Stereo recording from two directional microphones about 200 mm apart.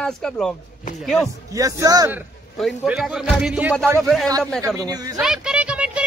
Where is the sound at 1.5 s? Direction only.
15° right (ahead or behind).